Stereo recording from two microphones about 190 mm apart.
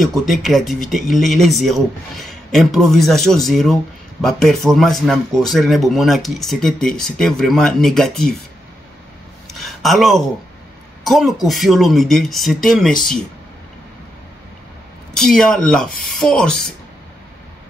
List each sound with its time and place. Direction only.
0.0 s a man's voice: centre (ahead or behind)
9.5 s a sound: centre (ahead or behind)
11.1 s a man's voice: centre (ahead or behind)
15.1 s a man's voice: centre (ahead or behind)